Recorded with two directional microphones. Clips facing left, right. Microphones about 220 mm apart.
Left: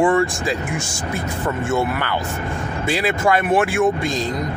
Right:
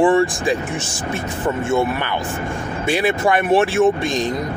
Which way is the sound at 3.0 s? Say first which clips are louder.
Right 1 dB; 20° right (ahead or behind).